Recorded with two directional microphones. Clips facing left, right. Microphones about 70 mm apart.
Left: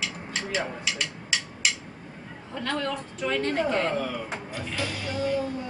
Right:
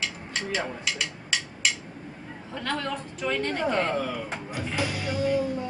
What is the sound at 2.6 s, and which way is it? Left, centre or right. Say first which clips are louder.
Speech: left 1 dB; centre.